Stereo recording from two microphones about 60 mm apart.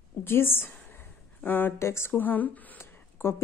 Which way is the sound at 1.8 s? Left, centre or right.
Left.